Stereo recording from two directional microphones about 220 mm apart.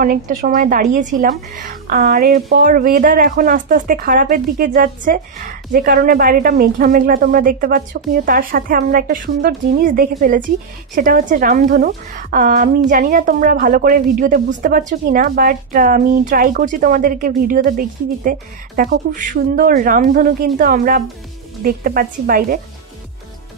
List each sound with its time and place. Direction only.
0.0 s a woman's voice: 40° right (ahead or behind)